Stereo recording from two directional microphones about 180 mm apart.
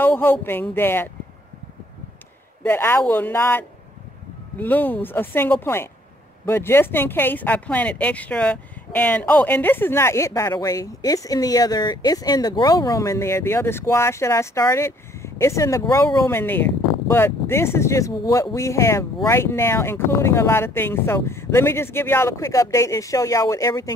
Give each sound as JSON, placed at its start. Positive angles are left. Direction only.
{"t": 0.0, "sound": "speech", "side_deg": 10}
{"t": 2.6, "sound": "speech", "side_deg": 10}